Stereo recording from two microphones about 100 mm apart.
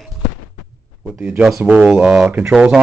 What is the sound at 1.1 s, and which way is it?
A man's voice, 15° right (ahead or behind).